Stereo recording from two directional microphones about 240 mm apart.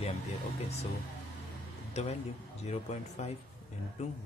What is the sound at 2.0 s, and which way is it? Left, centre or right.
Speech, left.